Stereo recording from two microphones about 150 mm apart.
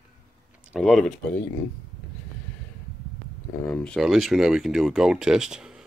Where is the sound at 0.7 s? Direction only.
Centre (ahead or behind).